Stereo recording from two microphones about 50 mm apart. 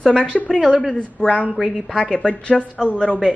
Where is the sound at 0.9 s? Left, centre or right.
Left.